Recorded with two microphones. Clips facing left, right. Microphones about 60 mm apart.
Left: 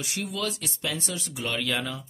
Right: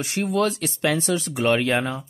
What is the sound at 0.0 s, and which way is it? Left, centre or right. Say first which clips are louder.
Speech: right 9 dB; right.